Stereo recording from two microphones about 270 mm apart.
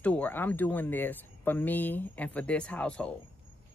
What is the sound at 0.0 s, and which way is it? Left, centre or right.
Speech, centre.